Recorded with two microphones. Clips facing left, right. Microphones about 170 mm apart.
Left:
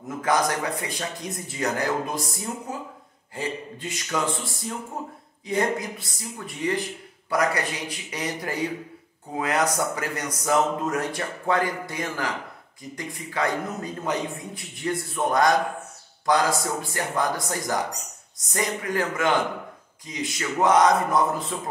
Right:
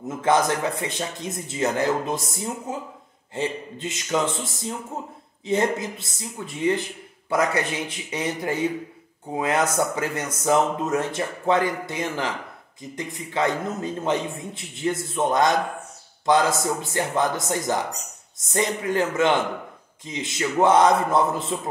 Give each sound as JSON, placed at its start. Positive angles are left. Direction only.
{"t": 0.2, "sound": "speech", "side_deg": -25}